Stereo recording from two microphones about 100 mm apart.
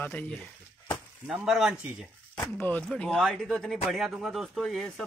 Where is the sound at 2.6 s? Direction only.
20° left (ahead or behind).